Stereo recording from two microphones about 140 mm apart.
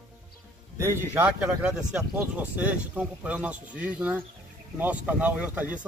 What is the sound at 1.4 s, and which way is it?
Speech, 5° right (ahead or behind).